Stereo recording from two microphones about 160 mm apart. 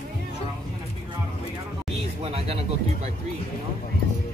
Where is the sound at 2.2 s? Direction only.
40° right (ahead or behind).